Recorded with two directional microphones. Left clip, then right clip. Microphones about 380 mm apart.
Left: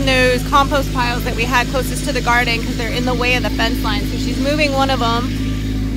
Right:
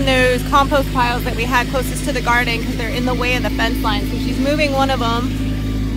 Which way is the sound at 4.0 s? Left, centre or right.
Centre.